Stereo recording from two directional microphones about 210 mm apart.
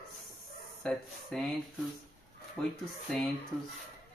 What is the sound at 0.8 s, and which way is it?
Speech, centre (ahead or behind).